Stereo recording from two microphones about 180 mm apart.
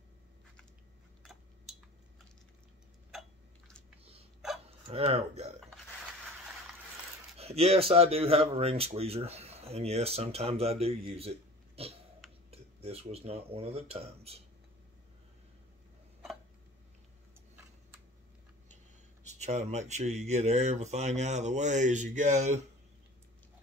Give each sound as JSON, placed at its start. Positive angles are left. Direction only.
{"t": 1.2, "sound": "a sound", "side_deg": 0}
{"t": 3.1, "sound": "a sound", "side_deg": 0}
{"t": 4.0, "sound": "hiccup", "side_deg": -35}
{"t": 4.6, "sound": "speech", "side_deg": -35}
{"t": 7.3, "sound": "speech", "side_deg": -35}
{"t": 19.2, "sound": "speech", "side_deg": -40}